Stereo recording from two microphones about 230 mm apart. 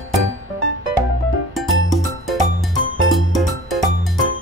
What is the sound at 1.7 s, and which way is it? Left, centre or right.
Music, centre.